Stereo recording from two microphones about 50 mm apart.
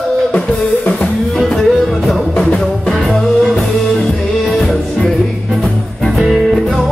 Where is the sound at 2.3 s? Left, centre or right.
Centre.